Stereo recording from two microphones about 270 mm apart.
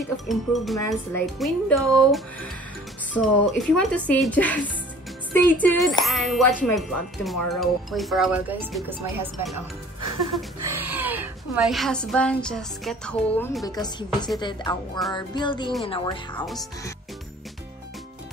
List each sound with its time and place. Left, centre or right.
0.3 s music: centre
0.7 s speech: centre
1.2 s music: centre
5.6 s music: centre
13.7 s speech: centre